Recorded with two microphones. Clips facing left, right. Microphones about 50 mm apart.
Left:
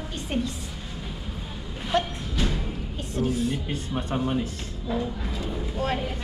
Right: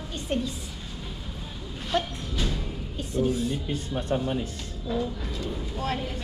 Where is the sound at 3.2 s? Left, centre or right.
Left.